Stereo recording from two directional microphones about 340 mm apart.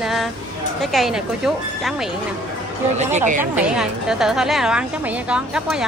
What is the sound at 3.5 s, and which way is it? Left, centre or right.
A woman's voice, centre.